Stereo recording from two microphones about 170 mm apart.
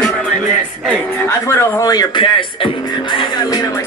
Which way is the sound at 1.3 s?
15° left (ahead or behind).